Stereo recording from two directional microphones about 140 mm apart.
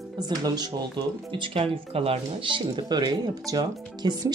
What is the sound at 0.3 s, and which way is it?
Speech, 30° right (ahead or behind).